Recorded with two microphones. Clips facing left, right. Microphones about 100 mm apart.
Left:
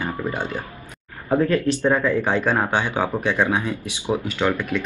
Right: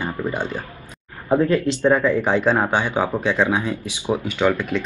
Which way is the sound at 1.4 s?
20° right (ahead or behind).